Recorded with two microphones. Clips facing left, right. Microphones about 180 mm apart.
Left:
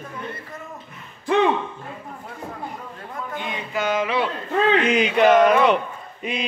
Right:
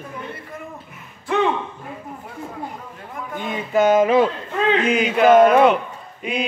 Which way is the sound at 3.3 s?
45° right (ahead or behind).